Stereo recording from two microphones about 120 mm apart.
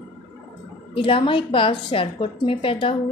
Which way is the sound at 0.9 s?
45° left (ahead or behind).